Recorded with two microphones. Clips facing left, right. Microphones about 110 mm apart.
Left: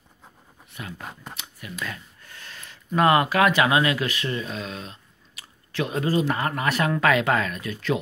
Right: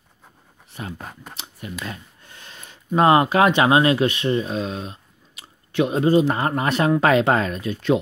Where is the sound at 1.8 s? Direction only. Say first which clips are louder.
Right 2 dB; 25° right (ahead or behind).